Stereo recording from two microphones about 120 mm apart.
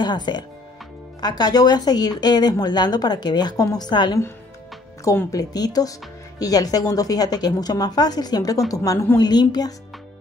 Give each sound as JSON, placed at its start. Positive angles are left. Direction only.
{"t": 0.0, "sound": "a woman's voice", "side_deg": 40}